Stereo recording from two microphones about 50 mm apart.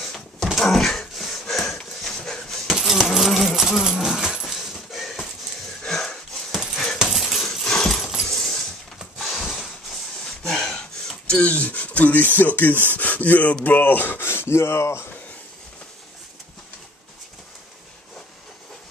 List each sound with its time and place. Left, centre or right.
0.0 s dog: centre
2.7 s coin: centre
3.8 s dog: centre
5.9 s sniff: centre
6.5 s dog: centre
7.0 s a sound: centre
7.6 s dog: centre
9.2 s a sound: centre
11.4 s a sound: left
13.7 s speech: left